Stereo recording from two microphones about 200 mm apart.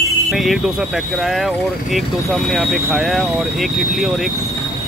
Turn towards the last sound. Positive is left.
turn(degrees=0)  # may be behind; listen again after turning